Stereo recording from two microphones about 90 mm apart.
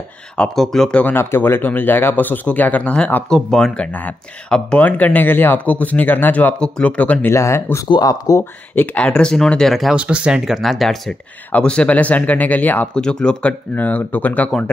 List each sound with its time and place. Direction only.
0.4 s speech: 5° left (ahead or behind)
1.0 s speech: 25° left (ahead or behind)
3.3 s speech: 5° left (ahead or behind)
7.3 s speech: 35° left (ahead or behind)
8.7 s speech: 20° left (ahead or behind); by 9.9 s centre (ahead or behind)
9.9 s speech: 15° right (ahead or behind); by 12.9 s 20° left (ahead or behind)
12.9 s speech: 10° left (ahead or behind)